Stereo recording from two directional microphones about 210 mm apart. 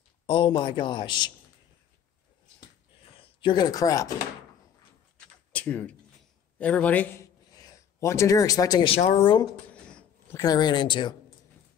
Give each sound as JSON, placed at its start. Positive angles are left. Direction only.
{"t": 0.3, "sound": "a man's voice", "side_deg": 25}
{"t": 3.2, "sound": "speech", "side_deg": 25}
{"t": 5.5, "sound": "typing", "side_deg": 5}
{"t": 6.6, "sound": "speech", "side_deg": 5}
{"t": 9.8, "sound": "a sound", "side_deg": 5}
{"t": 10.4, "sound": "a man's voice", "side_deg": 20}